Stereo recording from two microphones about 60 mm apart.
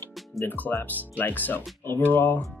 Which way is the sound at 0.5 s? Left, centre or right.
Left.